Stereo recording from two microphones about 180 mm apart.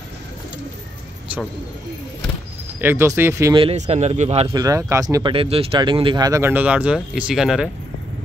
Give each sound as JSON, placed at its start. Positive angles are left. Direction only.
{"t": 2.8, "sound": "speech", "side_deg": -15}
{"t": 3.5, "sound": "a man's voice", "side_deg": -35}
{"t": 4.6, "sound": "speech", "side_deg": -15}